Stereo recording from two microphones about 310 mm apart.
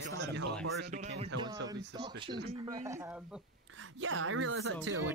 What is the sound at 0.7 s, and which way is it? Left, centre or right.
Speech, right.